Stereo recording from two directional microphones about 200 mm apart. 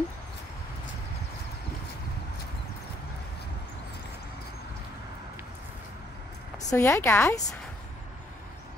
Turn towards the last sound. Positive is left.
turn(degrees=15)  # may be behind; listen again after turning